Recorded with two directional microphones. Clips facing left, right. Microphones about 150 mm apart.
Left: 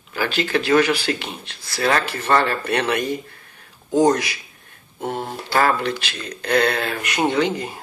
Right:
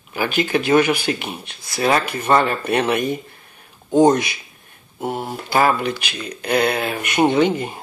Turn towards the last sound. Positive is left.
turn(degrees=-20)  # may be behind; listen again after turning